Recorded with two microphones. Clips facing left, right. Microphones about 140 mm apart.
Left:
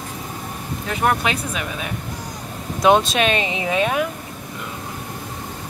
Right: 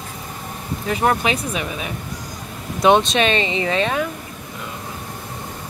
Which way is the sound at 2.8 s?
Centre (ahead or behind).